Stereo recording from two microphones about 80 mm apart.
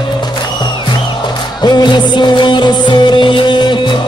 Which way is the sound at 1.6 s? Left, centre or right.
Left.